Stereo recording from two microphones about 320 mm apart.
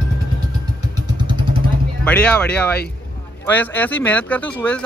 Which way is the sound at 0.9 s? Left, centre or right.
Centre.